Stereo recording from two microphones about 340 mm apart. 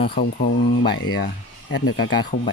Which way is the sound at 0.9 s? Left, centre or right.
Left.